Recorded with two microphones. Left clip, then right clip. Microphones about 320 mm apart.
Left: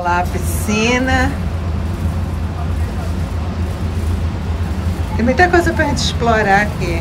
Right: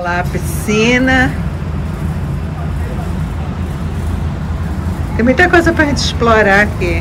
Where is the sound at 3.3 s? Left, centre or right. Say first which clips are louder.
Right 1 dB; centre.